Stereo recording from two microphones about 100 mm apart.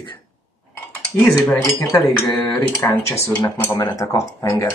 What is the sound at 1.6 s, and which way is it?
Speech, 30° left (ahead or behind).